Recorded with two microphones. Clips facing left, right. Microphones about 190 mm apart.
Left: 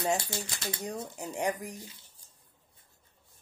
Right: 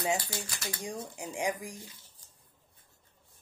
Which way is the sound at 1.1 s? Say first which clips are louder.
Left 1 dB; 10° right (ahead or behind).